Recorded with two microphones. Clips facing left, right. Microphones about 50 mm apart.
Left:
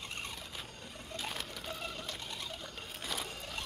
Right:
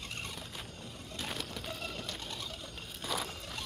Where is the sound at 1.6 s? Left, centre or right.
Centre.